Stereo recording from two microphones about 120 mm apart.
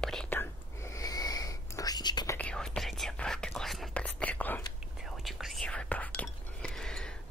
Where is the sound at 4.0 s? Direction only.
10° left (ahead or behind).